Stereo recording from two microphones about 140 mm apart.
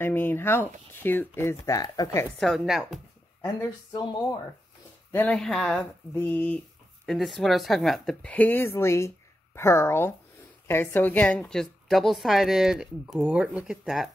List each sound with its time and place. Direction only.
0.0 s speech: 15° left (ahead or behind)
2.3 s a woman's voice: centre (ahead or behind)
3.4 s speech: 30° left (ahead or behind)
5.1 s a woman's voice: 10° left (ahead or behind)
6.1 s speech: 15° left (ahead or behind)
7.1 s a woman's voice: centre (ahead or behind)